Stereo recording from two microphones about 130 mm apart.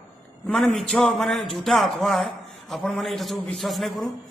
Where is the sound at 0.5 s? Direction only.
5° left (ahead or behind).